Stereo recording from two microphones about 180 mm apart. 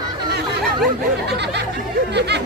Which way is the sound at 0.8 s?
65° right (ahead or behind).